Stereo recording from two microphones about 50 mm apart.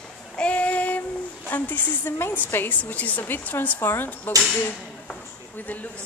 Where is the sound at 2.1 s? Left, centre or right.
Left.